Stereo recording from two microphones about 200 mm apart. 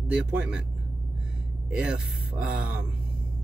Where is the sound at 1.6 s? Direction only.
5° right (ahead or behind).